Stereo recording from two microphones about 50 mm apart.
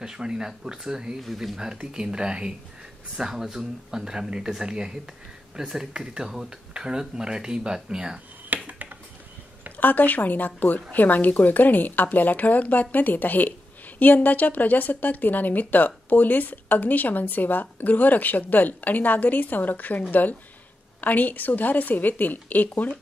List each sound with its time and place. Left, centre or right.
0.0 s speech: centre
1.6 s speech: centre
8.6 s finger snapping: right
9.8 s a woman's voice: left